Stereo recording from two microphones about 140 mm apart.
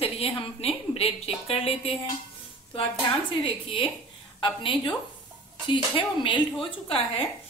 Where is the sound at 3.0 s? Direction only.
40° left (ahead or behind).